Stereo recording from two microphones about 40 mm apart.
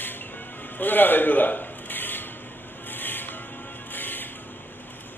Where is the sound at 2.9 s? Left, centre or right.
Left.